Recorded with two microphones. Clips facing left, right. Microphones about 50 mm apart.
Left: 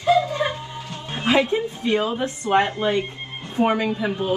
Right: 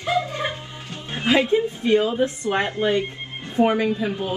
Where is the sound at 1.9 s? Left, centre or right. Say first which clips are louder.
Right 3 dB; left.